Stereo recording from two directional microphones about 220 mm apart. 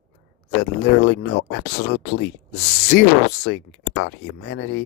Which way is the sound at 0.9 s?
50° left (ahead or behind).